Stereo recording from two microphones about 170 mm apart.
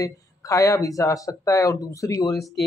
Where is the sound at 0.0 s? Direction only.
20° left (ahead or behind).